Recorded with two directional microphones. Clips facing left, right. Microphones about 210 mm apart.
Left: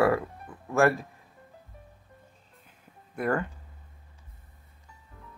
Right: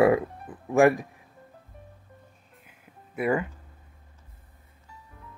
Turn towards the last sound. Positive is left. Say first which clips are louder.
# right 2 dB
turn(degrees=-5)  # may be behind; listen again after turning